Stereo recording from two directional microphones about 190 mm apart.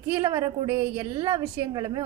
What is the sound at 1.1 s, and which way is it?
Speech, 25° right (ahead or behind).